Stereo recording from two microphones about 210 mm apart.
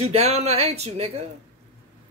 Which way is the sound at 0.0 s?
30° right (ahead or behind).